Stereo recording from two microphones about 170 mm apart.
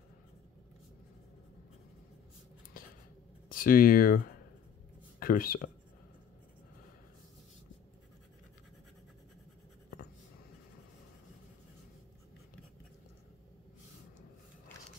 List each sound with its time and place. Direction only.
2.8 s a sound: 55° left (ahead or behind)
3.4 s speech: 55° left (ahead or behind)
5.2 s speech: 60° left (ahead or behind)